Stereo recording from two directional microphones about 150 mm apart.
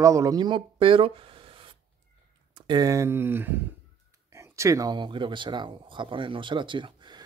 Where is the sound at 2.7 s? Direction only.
25° right (ahead or behind).